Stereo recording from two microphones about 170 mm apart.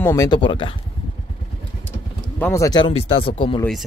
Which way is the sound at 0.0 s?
20° left (ahead or behind).